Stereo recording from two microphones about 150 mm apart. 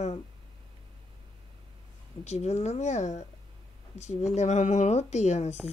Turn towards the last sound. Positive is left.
turn(degrees=50)  # may be behind; listen again after turning